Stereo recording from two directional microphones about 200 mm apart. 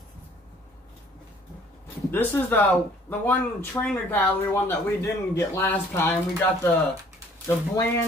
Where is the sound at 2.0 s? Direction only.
10° left (ahead or behind).